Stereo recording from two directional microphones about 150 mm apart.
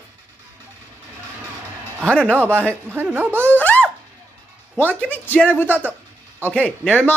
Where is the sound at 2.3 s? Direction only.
15° right (ahead or behind).